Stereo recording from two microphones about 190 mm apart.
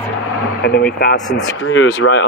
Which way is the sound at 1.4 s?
90° left.